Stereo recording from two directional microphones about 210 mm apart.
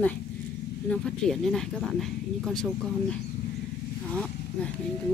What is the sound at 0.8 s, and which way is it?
Speech, 5° left (ahead or behind).